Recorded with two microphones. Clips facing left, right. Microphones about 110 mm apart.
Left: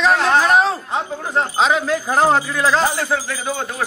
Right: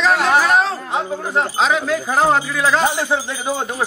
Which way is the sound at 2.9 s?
20° right (ahead or behind).